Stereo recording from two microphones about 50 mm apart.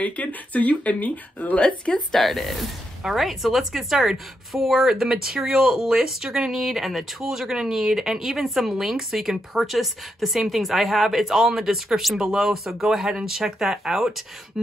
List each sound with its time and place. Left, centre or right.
0.0 s speech: left
2.1 s a woman's voice: centre